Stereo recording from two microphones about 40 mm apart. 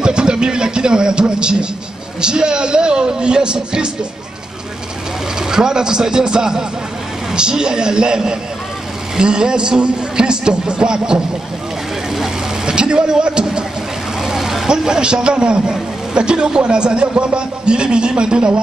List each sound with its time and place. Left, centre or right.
0.0 s a man's voice: right
5.4 s a man's voice: centre
12.6 s a man's voice: right
14.2 s vehicle: centre
14.9 s a man's voice: right